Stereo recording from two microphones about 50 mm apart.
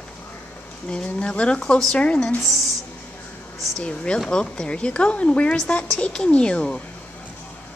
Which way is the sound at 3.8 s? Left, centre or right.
Centre.